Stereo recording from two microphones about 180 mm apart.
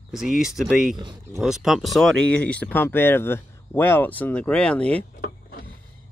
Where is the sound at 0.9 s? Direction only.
25° right (ahead or behind).